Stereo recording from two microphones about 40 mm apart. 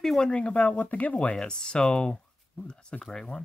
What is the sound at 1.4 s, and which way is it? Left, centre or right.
Speech, centre.